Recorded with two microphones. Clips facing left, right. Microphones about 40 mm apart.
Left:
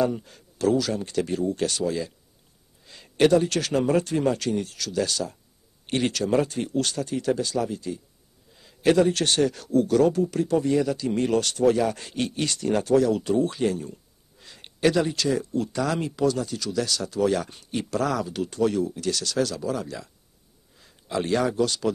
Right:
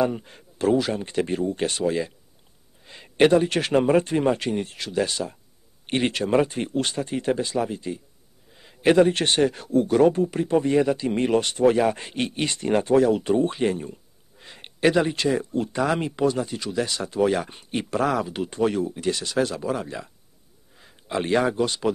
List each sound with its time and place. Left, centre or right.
0.0 s a man's voice: right